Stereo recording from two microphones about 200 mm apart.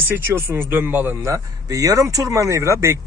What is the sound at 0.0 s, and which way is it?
Speech, 10° right (ahead or behind).